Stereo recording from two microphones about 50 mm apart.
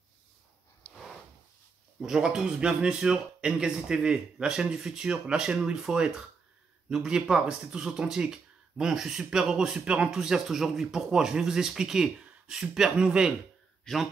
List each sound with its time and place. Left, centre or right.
2.0 s a man's voice: centre
9.8 s a man's voice: right
13.9 s a man's voice: centre